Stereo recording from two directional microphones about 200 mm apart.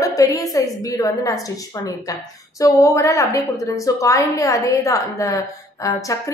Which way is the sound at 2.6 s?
15° left (ahead or behind).